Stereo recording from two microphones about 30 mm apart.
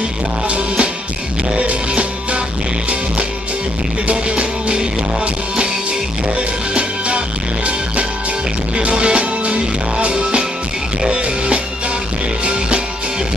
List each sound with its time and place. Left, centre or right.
1.7 s music: right
4.1 s music: right
6.7 s music: right
8.7 s music: right